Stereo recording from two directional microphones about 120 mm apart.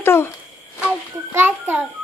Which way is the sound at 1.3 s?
15° right (ahead or behind).